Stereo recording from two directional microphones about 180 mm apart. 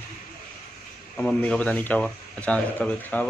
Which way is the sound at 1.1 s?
5° left (ahead or behind).